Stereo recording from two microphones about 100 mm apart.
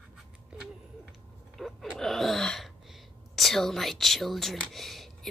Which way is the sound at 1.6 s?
Centre (ahead or behind).